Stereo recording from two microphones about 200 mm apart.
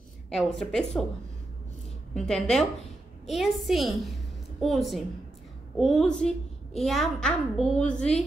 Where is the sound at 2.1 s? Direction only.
5° left (ahead or behind).